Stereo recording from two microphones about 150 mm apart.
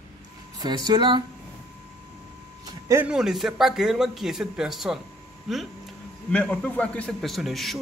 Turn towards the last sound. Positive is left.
turn(degrees=0)  # may be behind; listen again after turning